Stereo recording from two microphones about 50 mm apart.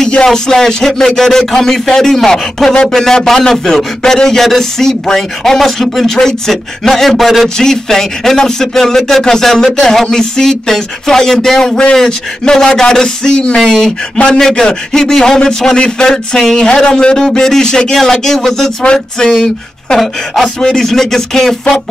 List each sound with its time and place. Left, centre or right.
0.2 s a man's voice: centre
7.4 s a man's voice: centre